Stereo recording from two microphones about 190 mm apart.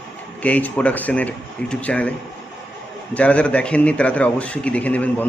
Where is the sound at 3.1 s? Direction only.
5° left (ahead or behind).